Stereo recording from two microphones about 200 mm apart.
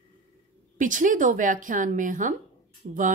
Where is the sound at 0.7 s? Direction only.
40° right (ahead or behind).